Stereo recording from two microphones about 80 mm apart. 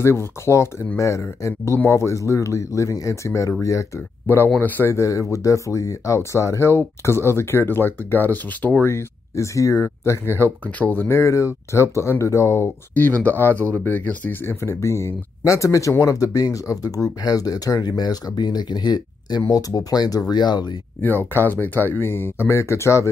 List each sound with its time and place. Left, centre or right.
0.0 s speech: left
4.6 s speech: left
4.9 s speech: left
8.8 s speech: left
11.1 s speech: left
13.2 s speech: left
14.4 s speech: left
19.5 s speech: left
21.0 s speech: left